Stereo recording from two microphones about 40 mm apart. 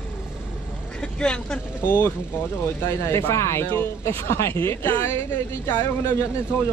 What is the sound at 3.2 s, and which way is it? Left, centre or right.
Speech, left.